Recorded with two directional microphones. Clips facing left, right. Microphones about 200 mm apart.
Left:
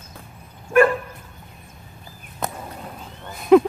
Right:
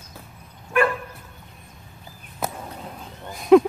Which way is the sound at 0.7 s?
40° left (ahead or behind).